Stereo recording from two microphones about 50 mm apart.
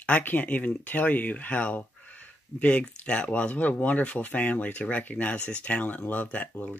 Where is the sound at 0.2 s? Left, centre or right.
Left.